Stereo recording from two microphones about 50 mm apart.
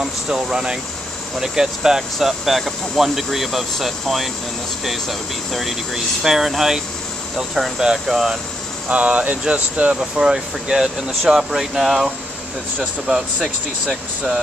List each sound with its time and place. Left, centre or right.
0.0 s speech: centre
8.8 s speech: right
9.9 s speech: centre